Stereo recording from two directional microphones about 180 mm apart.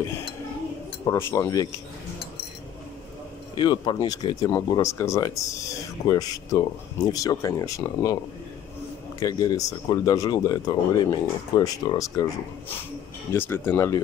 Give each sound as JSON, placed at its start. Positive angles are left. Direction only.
{"t": 1.0, "sound": "speech", "side_deg": 15}
{"t": 3.5, "sound": "speech", "side_deg": 25}
{"t": 9.2, "sound": "speech", "side_deg": 20}
{"t": 13.3, "sound": "speech", "side_deg": 10}